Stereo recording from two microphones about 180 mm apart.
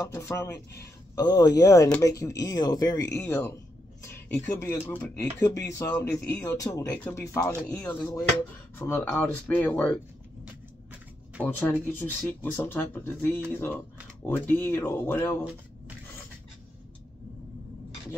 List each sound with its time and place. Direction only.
0.0 s speech: 20° left (ahead or behind)
11.4 s speech: 10° left (ahead or behind)